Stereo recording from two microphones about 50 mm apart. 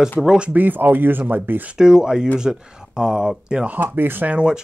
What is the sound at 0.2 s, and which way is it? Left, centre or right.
Speech, centre.